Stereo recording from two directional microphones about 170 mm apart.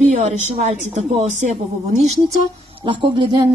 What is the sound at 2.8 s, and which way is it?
Speech, 30° right (ahead or behind).